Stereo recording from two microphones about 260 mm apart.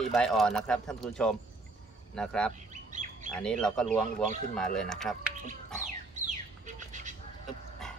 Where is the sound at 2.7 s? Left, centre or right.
Right.